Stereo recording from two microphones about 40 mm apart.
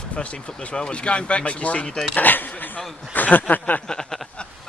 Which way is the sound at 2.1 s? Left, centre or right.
Left.